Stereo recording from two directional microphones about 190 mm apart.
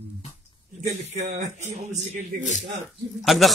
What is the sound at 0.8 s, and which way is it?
A man's voice, 35° right (ahead or behind).